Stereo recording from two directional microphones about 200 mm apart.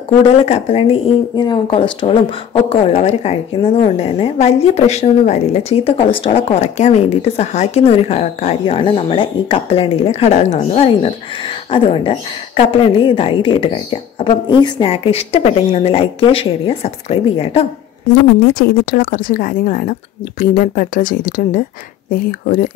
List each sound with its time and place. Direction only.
0.3 s a woman's voice: 30° left (ahead or behind)
18.5 s a woman's voice: 45° left (ahead or behind)